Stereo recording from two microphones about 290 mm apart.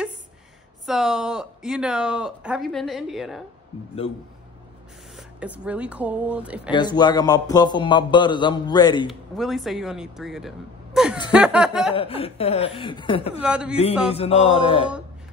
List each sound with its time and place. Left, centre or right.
0.8 s speech: centre
5.1 s speech: centre
6.7 s speech: centre
9.4 s speech: centre
11.9 s speech: centre
13.4 s speech: centre
14.0 s speech: left